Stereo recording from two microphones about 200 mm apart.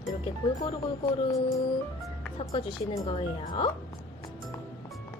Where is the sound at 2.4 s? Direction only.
30° left (ahead or behind).